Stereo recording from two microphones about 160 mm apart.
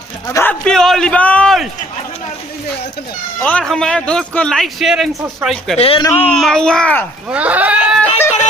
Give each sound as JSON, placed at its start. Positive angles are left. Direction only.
{"t": 0.3, "sound": "a man's voice", "side_deg": 10}
{"t": 3.3, "sound": "a man's voice", "side_deg": 10}
{"t": 5.8, "sound": "a man's voice", "side_deg": 35}
{"t": 6.2, "sound": "a man's voice", "side_deg": 5}
{"t": 7.2, "sound": "speech", "side_deg": -10}